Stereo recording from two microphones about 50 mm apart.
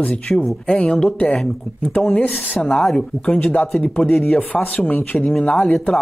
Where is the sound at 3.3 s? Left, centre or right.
Left.